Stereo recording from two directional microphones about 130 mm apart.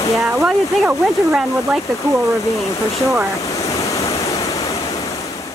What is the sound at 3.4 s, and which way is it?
Waves, 25° left (ahead or behind).